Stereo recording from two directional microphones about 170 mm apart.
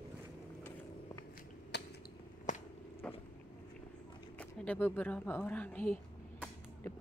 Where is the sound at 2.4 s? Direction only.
45° left (ahead or behind).